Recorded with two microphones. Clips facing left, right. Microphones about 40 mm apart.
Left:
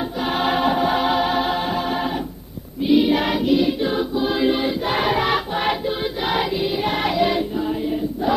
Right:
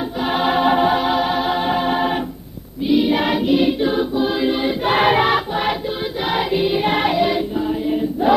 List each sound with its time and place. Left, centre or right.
0.2 s choir: centre
0.9 s music: centre
1.7 s music: right
2.9 s choir: centre
4.8 s choir: right
5.3 s music: centre
6.5 s music: right
7.2 s music: centre
8.2 s choir: right